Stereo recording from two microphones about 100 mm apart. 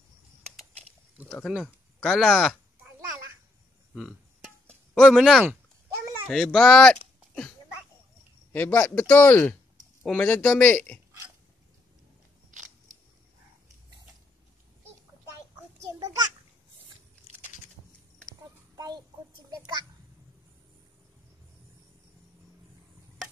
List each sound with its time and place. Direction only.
1.4 s speech: centre (ahead or behind)
4.9 s speech: 5° left (ahead or behind)
8.5 s speech: 20° left (ahead or behind)
18.8 s child singing: 40° right (ahead or behind)
19.5 s a sound: 40° right (ahead or behind)